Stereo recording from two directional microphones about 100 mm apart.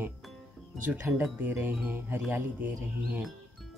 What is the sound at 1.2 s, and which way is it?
Speech, 20° right (ahead or behind).